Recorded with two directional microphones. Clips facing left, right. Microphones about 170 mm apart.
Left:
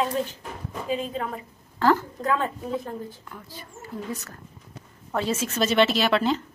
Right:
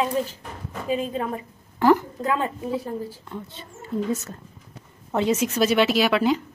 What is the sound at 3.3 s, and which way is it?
Speech, 25° right (ahead or behind).